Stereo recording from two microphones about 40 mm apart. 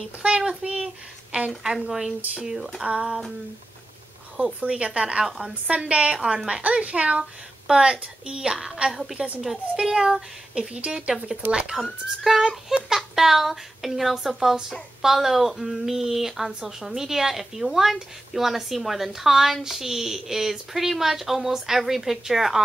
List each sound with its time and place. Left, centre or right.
0.2 s a woman's voice: right
0.6 s a woman's voice: right
1.3 s a woman's voice: right
1.8 s a woman's voice: centre
3.1 s a sound: centre
4.6 s a woman's voice: right
8.8 s a woman's voice: right
9.4 s speech: centre
10.5 s a woman's voice: right
11.8 s a child's voice: centre